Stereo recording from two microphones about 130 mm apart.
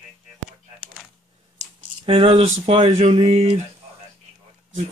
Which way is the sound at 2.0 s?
45° right (ahead or behind).